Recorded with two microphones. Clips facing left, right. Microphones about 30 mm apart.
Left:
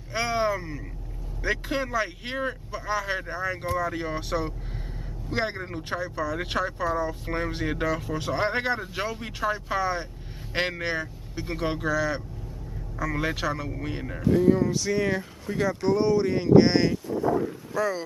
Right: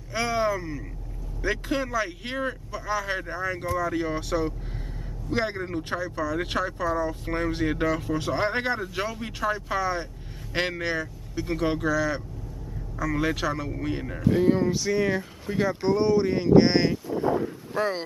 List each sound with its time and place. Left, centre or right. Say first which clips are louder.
0.1 s a sound: even; centre
1.4 s speech: even; centre
14.3 s speech: left 1 dB; right
14.7 s speech: right 1 dB; centre
15.5 s speech: even; centre
17.7 s speech: even; right